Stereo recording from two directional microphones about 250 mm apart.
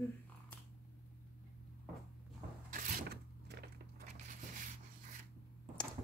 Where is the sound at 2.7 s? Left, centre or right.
Right.